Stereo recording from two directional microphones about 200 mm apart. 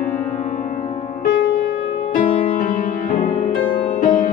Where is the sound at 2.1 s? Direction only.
35° left (ahead or behind).